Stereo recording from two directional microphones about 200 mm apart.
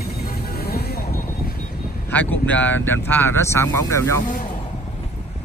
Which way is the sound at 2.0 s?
10° left (ahead or behind).